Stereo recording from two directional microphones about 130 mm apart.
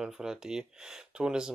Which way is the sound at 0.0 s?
5° right (ahead or behind).